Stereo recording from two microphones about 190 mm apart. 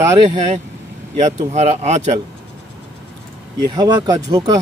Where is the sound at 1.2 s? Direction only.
35° right (ahead or behind).